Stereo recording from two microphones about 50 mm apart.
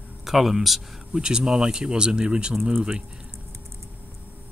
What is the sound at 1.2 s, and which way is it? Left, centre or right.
Speech, centre.